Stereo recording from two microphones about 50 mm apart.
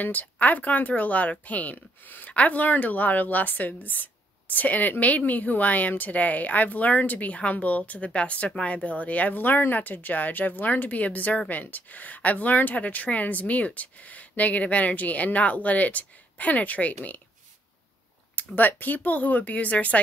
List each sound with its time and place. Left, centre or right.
0.0 s speech: left
18.3 s speech: left